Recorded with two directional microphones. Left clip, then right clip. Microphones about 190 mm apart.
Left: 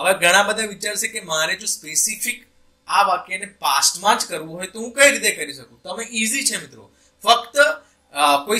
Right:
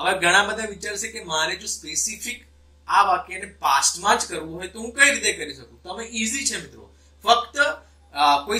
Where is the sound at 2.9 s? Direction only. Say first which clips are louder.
Left 1 dB; 40° left (ahead or behind).